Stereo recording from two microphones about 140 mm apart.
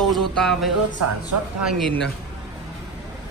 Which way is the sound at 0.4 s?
5° left (ahead or behind).